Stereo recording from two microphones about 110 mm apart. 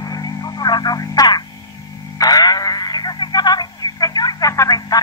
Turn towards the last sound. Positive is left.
turn(degrees=35)  # may be behind; listen again after turning